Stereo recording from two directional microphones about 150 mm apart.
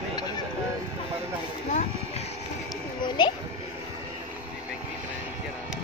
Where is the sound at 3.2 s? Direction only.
30° left (ahead or behind).